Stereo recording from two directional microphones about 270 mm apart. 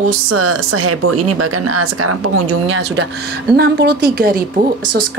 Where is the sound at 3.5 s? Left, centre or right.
Right.